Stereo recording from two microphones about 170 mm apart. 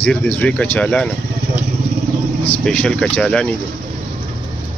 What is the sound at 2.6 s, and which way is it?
Speech, 5° left (ahead or behind).